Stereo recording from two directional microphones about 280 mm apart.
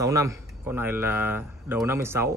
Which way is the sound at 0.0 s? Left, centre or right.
Centre.